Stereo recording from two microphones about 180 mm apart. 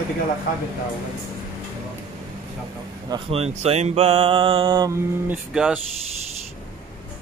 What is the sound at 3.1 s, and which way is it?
Speech, 30° right (ahead or behind).